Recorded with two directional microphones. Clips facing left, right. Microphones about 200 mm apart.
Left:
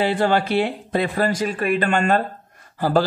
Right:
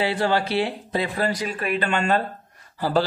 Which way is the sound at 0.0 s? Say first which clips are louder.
Left 3 dB; 50° left (ahead or behind).